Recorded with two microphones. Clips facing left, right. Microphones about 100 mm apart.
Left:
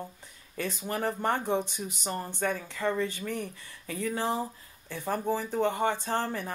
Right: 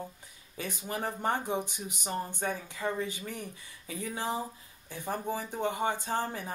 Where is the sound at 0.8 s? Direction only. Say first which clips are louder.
Left 2 dB; 60° left (ahead or behind).